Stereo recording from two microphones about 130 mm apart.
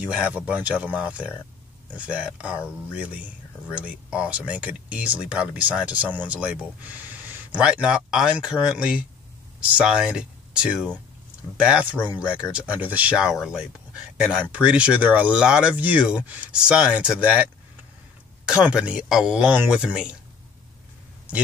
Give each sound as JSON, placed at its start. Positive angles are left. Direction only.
{"t": 0.0, "sound": "speech", "side_deg": -10}